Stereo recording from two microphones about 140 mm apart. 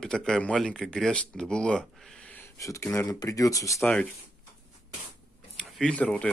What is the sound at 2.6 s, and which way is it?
Speech, 20° left (ahead or behind).